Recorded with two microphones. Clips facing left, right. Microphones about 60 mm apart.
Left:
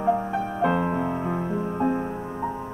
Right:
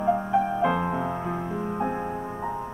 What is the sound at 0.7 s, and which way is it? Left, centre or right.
Music, left.